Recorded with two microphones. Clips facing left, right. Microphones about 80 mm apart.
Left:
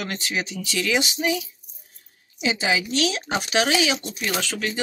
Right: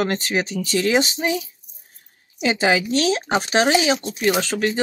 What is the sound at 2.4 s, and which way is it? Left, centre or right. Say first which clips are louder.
Speech: right 5 dB; right.